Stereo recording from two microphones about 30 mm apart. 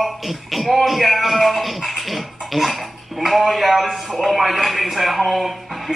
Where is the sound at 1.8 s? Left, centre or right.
Centre.